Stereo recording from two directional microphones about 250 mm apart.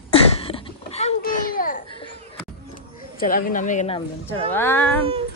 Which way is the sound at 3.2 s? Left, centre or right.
Left.